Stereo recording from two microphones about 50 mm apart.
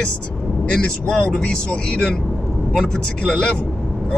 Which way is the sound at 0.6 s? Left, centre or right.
Centre.